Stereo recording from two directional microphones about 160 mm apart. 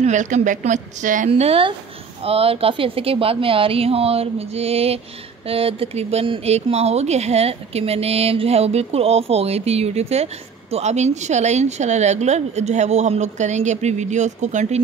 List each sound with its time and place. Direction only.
0.0 s speech: 50° right (ahead or behind)
1.3 s a woman's voice: 35° right (ahead or behind)